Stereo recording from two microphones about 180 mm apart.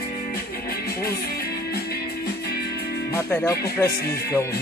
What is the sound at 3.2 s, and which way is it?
Speech, 15° left (ahead or behind).